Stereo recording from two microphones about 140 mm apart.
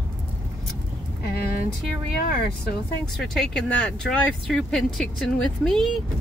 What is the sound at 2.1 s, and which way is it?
Speech, 90° left.